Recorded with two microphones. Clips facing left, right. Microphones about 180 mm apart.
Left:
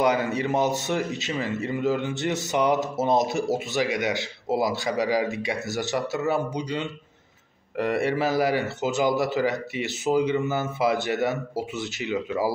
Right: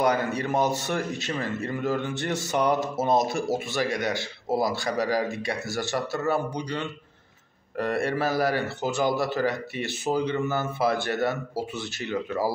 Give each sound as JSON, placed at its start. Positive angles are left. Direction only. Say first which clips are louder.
{"t": 0.0, "sound": "a man's voice", "louder": "left 1 dB", "side_deg": 15}